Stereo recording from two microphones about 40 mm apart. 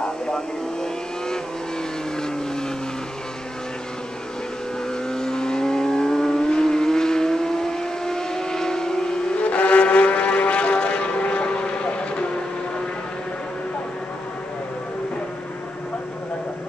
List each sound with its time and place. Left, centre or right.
5.1 s vehicle: centre
9.4 s vehicle: left